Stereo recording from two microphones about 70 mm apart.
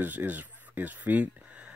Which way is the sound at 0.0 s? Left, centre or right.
Right.